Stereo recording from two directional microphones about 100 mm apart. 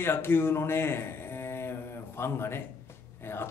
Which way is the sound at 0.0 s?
25° left (ahead or behind).